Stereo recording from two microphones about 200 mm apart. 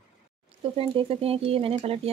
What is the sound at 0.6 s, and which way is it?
A woman's voice, 30° right (ahead or behind).